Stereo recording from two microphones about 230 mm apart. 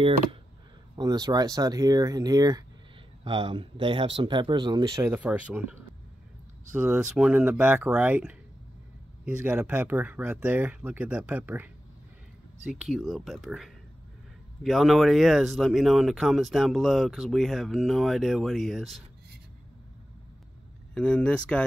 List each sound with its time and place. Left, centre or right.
0.9 s speech: centre
12.9 s speech: centre
20.9 s speech: centre